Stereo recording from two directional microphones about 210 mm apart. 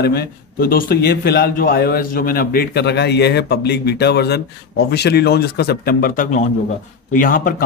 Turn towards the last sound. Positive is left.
turn(degrees=40)  # may be behind; listen again after turning